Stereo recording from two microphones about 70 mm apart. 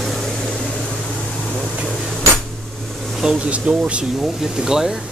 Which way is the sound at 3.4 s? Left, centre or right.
Centre.